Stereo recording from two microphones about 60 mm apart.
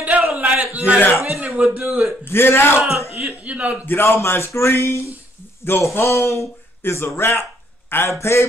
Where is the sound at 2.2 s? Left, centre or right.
Left.